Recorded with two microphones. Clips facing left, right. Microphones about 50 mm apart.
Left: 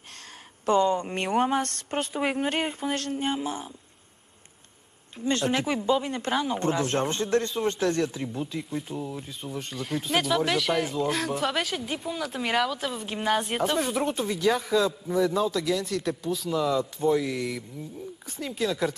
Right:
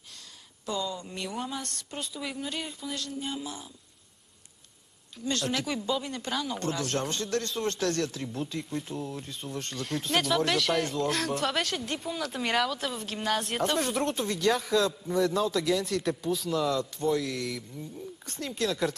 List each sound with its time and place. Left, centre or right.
0.7 s a woman's voice: left
3.3 s speech: left
5.1 s speech: left
7.4 s speech: centre